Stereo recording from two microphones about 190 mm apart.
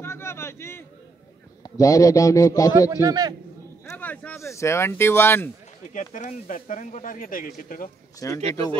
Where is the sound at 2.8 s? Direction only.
20° right (ahead or behind).